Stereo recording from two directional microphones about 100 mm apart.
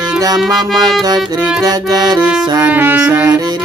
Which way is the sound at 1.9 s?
40° right (ahead or behind).